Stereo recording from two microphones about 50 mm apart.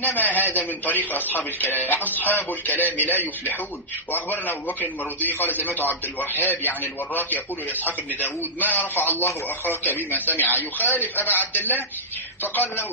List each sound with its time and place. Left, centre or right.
0.0 s a man's voice: left
8.5 s a man's voice: left